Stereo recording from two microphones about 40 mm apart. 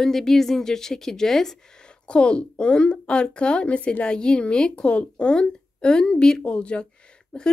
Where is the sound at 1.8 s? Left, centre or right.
Left.